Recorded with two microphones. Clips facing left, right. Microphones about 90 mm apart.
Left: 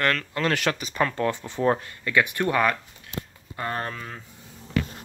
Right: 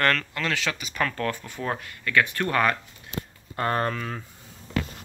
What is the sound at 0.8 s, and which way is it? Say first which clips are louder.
Speech: left 3 dB; 25° left (ahead or behind).